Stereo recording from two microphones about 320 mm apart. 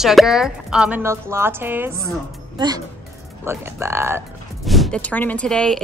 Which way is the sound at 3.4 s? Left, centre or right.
Centre.